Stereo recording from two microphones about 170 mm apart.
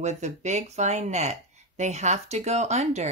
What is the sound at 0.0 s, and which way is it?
Speech, 40° right (ahead or behind).